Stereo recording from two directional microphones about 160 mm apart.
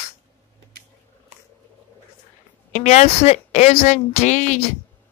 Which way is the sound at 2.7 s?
45° left (ahead or behind).